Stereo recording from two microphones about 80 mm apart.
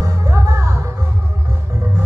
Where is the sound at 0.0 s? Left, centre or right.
Right.